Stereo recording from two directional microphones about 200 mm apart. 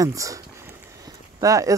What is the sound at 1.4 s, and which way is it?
Speech, 15° right (ahead or behind).